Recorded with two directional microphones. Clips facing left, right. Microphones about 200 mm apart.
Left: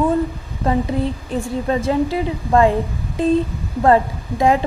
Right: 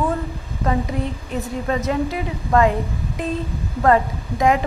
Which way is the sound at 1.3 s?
30° left (ahead or behind).